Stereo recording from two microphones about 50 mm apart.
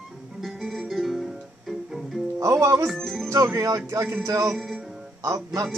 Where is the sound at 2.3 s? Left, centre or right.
Right.